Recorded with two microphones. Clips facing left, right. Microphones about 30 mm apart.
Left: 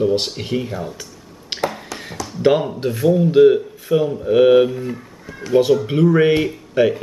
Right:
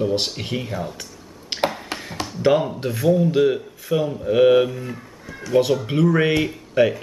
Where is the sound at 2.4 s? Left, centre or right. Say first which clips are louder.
Left 2 dB; centre.